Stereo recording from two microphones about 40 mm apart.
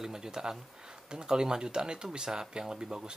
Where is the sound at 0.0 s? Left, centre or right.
Centre.